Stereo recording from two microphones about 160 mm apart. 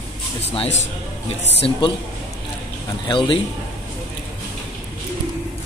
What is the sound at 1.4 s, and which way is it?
Speech, 40° left (ahead or behind).